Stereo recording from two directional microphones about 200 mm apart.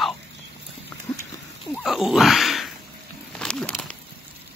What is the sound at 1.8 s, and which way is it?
Speech, centre (ahead or behind).